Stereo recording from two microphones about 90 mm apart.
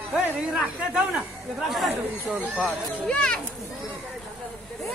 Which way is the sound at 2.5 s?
10° left (ahead or behind).